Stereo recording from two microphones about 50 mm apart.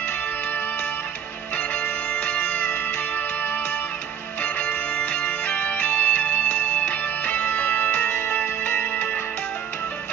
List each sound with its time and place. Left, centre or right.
2.1 s music: left
5.5 s music: left